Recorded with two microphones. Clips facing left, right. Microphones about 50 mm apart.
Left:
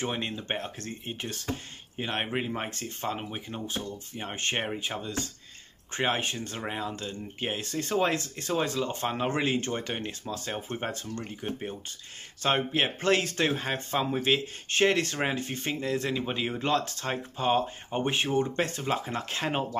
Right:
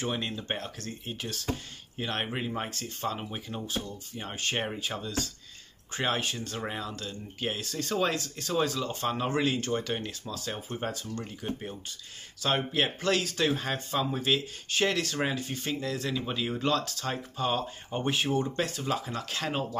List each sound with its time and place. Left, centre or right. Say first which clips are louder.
0.0 s speech: left 1 dB; left
3.4 s speech: even; left
10.7 s speech: left 1 dB; left
12.4 s speech: left 1 dB; left